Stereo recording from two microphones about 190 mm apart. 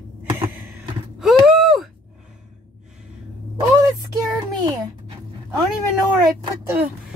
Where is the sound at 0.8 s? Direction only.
Centre (ahead or behind).